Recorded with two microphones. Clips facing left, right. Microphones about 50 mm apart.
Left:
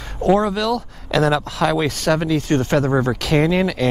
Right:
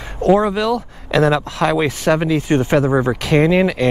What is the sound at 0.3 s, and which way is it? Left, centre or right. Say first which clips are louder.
Speech: right 2 dB; centre.